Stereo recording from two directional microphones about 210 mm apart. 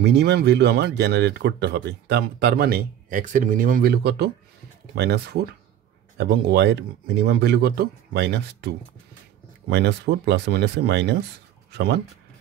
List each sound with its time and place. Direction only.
0.0 s speech: 50° right (ahead or behind)